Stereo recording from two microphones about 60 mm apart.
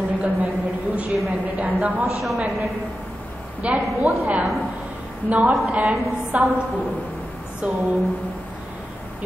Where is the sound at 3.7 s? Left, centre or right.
Right.